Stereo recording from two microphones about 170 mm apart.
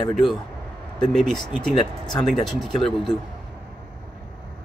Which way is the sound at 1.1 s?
Centre (ahead or behind).